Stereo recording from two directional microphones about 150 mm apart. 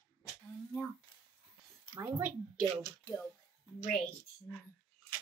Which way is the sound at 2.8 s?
20° left (ahead or behind).